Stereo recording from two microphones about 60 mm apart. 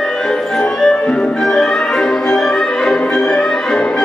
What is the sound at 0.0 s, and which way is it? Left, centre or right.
Music, centre.